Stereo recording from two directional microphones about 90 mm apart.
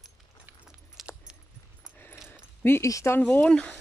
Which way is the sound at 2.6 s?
25° left (ahead or behind).